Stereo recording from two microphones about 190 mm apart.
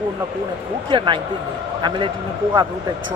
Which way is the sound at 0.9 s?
25° right (ahead or behind).